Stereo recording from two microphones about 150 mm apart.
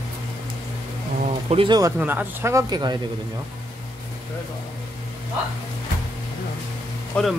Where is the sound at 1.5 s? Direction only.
40° right (ahead or behind).